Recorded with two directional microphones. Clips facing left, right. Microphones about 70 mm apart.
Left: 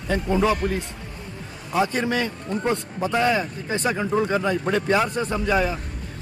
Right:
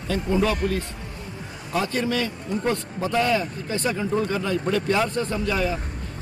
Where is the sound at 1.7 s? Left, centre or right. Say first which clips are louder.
Left 2 dB; left.